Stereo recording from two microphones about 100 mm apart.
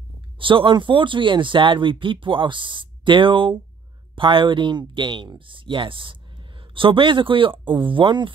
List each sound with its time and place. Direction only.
0.4 s speech: 60° right (ahead or behind)